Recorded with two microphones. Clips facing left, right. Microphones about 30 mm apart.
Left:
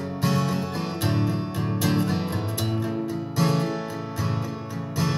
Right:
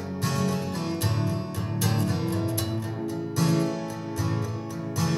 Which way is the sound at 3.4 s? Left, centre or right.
Centre.